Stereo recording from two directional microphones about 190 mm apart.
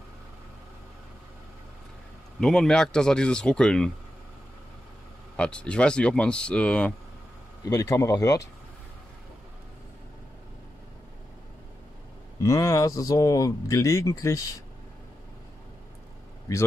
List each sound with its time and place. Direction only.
2.4 s speech: 5° left (ahead or behind)
5.3 s speech: 5° left (ahead or behind)
7.6 s speech: 20° left (ahead or behind)
12.4 s speech: 15° left (ahead or behind)